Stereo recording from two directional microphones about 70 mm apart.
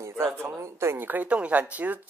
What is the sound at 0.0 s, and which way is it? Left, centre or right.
Speech, right.